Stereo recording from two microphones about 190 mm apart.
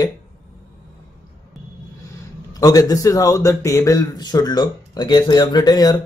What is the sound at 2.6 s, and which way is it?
A man's voice, 20° left (ahead or behind).